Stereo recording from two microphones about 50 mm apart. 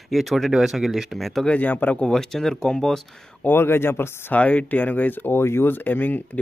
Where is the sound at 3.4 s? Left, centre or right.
Left.